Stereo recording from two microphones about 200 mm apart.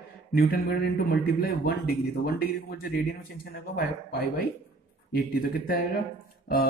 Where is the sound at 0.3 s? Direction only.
50° left (ahead or behind).